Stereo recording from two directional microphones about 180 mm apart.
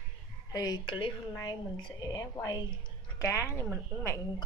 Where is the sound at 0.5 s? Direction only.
20° left (ahead or behind).